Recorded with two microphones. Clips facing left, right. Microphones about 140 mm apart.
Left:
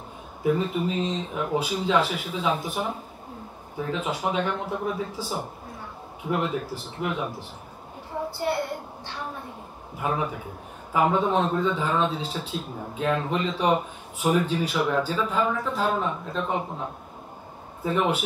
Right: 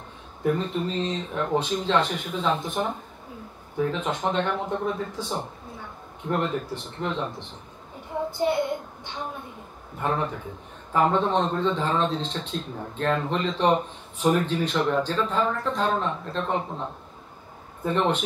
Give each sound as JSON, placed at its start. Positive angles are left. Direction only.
{"t": 0.4, "sound": "a man's voice", "side_deg": 5}
{"t": 8.1, "sound": "a child's voice", "side_deg": -20}
{"t": 9.9, "sound": "a man's voice", "side_deg": 5}